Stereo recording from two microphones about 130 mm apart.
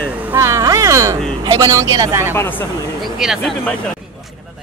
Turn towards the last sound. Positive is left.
turn(degrees=0)  # may be behind; listen again after turning